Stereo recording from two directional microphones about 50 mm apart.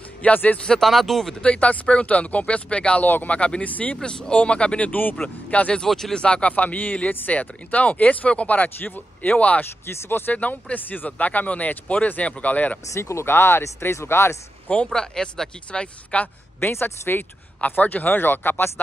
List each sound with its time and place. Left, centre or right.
0.2 s speech: left
0.6 s speech: centre
1.4 s speech: left
3.1 s speech: left
3.3 s speech: left
5.8 s speech: centre
6.1 s speech: centre
8.6 s speech: left
9.8 s speech: left
10.3 s speech: left
12.8 s speech: left
14.9 s speech: centre
17.6 s speech: left